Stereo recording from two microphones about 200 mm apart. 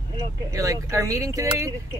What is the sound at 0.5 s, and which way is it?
Speech, 15° right (ahead or behind).